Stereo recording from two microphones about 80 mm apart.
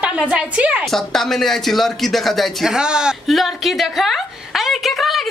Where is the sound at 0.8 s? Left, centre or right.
Centre.